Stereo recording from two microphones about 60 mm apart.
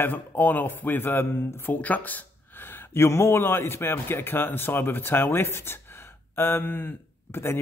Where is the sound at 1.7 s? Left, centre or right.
Left.